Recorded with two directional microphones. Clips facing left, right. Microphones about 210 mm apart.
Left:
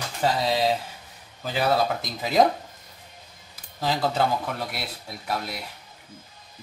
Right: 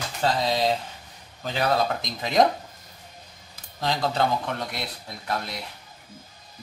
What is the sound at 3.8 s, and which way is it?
Speech, 5° left (ahead or behind).